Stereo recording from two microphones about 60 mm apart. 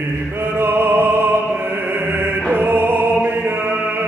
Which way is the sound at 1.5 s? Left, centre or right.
Right.